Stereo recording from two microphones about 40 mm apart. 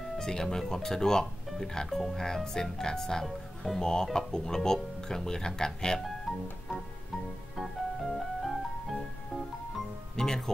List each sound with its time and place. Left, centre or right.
0.2 s speech: centre
3.3 s speech: centre
3.8 s speech: centre
7.5 s music: centre
10.1 s music: centre